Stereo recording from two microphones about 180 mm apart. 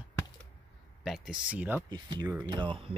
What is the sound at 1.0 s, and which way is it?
Speech, centre (ahead or behind).